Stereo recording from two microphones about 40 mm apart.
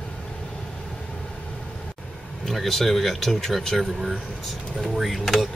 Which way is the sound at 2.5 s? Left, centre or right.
Centre.